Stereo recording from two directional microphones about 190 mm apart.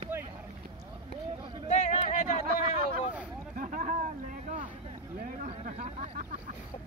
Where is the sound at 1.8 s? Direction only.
40° left (ahead or behind).